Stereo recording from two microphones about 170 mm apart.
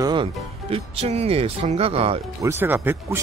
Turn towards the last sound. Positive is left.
turn(degrees=-10)  # may be behind; listen again after turning